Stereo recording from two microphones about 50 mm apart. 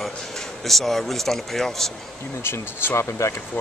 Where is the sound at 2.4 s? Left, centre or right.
Left.